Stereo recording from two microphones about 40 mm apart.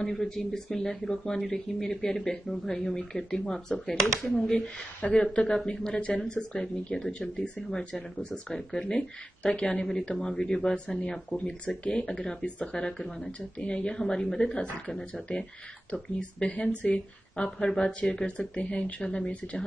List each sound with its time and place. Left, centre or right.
0.0 s speech: centre
5.1 s a woman's voice: left
9.8 s speech: centre
11.3 s a woman's voice: left; by 13.3 s centre
13.6 s a woman's voice: left
14.9 s speech: centre
15.9 s a woman's voice: left
18.6 s speech: left
18.9 s a woman's voice: centre